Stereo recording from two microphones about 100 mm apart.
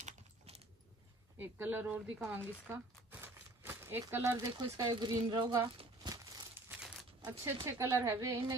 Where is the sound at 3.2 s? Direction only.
25° right (ahead or behind).